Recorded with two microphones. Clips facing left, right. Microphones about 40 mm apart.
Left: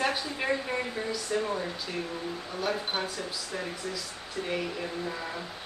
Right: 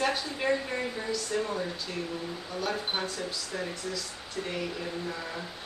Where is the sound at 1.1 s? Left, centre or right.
Centre.